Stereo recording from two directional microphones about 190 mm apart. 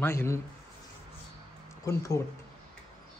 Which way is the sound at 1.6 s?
15° left (ahead or behind).